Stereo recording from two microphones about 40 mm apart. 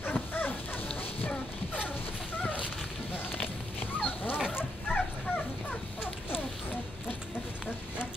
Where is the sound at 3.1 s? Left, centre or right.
Left.